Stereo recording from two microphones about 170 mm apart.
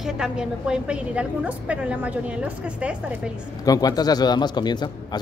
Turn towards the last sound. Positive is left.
turn(degrees=25)  # may be behind; listen again after turning